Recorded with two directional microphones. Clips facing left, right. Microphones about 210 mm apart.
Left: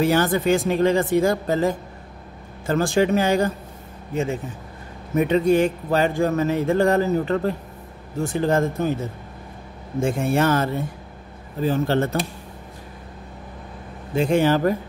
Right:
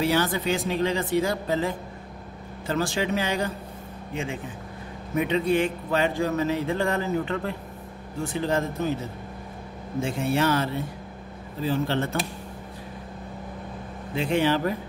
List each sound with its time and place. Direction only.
0.0 s speech: 50° left (ahead or behind)
9.9 s speech: 50° left (ahead or behind)
14.1 s speech: 45° left (ahead or behind)